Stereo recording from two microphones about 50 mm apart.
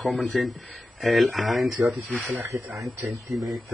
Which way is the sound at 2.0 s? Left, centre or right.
Right.